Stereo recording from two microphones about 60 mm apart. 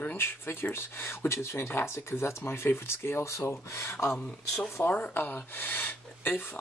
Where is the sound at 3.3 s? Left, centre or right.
Left.